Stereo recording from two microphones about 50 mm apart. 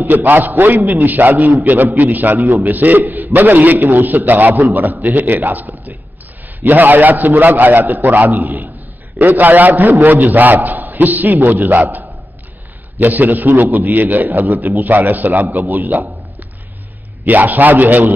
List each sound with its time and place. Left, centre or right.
0.0 s a man's voice: right
15.7 s a sound: right
17.2 s a man's voice: right